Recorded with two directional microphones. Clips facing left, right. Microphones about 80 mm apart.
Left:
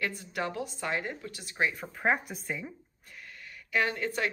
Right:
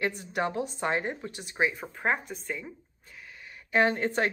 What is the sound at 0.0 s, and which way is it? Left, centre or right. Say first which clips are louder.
A woman's voice: right 4 dB; right.